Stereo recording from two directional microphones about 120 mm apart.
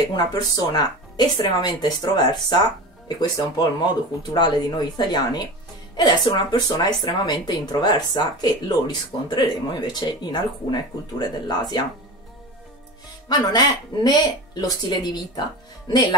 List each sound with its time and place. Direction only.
0.1 s speech: 35° left (ahead or behind)
13.3 s speech: 35° left (ahead or behind)